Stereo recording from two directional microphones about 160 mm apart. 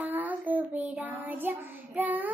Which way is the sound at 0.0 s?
10° right (ahead or behind).